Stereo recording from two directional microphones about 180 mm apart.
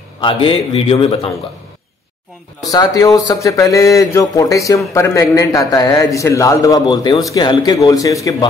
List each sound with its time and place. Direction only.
0.2 s a man's voice: 25° left (ahead or behind)
2.7 s a man's voice: 20° left (ahead or behind)